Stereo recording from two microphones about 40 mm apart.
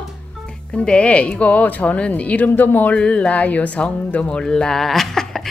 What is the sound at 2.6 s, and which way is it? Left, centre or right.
Speech, left.